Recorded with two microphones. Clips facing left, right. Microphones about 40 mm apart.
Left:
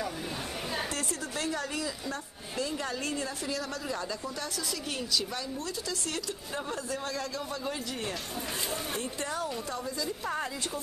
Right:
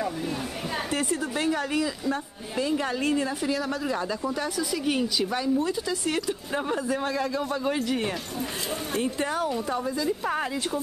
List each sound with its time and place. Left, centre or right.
0.9 s a woman's voice: centre
9.0 s a man's voice: right
9.4 s a woman's voice: centre